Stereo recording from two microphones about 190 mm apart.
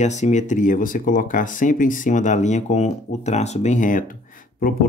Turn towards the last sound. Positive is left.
turn(degrees=45)  # may be behind; listen again after turning